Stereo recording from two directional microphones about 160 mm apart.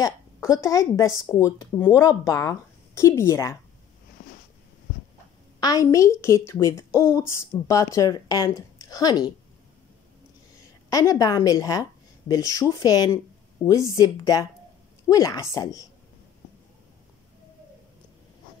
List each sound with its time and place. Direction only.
0.0 s speech: 20° left (ahead or behind)
4.2 s a sound: 65° left (ahead or behind)
5.6 s speech: 20° left (ahead or behind)
10.9 s a woman's voice: 20° left (ahead or behind)